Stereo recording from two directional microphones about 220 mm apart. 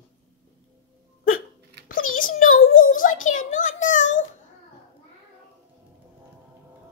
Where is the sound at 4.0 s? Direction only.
60° left (ahead or behind).